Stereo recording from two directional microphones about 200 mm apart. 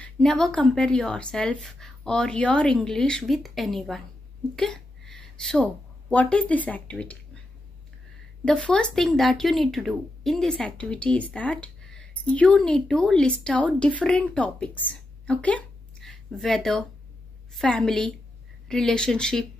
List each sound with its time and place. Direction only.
0.0 s a woman's voice: centre (ahead or behind)
8.5 s speech: 5° left (ahead or behind)